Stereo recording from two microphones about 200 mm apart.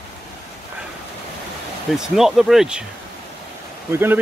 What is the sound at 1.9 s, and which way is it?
Speech, centre (ahead or behind).